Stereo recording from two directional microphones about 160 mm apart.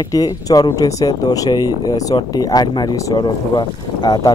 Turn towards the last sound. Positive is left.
turn(degrees=25)  # may be behind; listen again after turning